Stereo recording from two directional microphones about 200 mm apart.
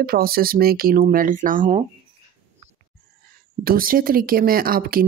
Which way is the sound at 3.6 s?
45° right (ahead or behind).